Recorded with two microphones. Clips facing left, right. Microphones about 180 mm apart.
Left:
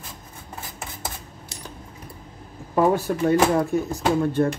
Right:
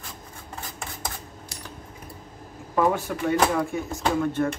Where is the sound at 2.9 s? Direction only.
40° left (ahead or behind).